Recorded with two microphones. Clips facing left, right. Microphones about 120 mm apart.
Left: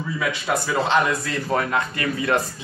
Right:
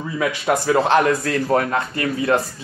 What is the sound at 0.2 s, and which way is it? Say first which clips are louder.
Speech: right 5 dB; 55° right (ahead or behind).